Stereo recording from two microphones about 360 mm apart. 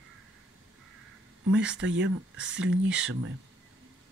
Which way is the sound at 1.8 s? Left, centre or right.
Right.